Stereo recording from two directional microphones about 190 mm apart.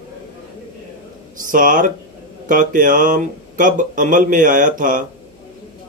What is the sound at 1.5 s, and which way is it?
Speech, 45° right (ahead or behind).